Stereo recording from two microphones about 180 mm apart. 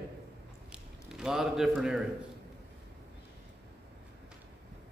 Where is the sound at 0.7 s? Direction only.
5° right (ahead or behind).